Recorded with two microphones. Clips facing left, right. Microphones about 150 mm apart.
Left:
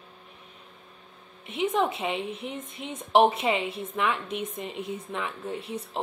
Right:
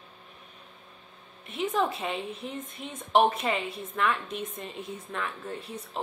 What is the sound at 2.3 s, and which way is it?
Speech, 85° left.